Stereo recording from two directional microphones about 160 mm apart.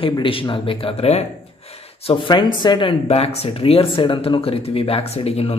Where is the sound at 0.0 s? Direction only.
35° left (ahead or behind).